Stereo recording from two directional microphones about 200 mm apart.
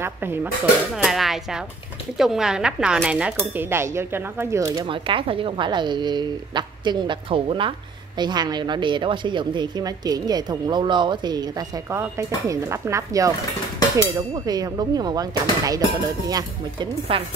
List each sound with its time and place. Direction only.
0.0 s a woman's voice: 10° right (ahead or behind)